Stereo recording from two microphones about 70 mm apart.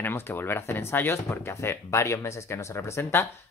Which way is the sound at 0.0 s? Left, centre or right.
Left.